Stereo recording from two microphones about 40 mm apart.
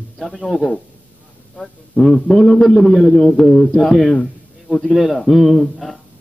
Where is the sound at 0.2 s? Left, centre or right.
Centre.